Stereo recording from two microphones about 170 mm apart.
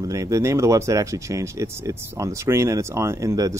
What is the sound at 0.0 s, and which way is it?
Speech, 20° right (ahead or behind).